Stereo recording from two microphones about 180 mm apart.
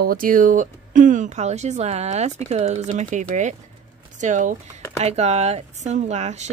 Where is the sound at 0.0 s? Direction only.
50° right (ahead or behind).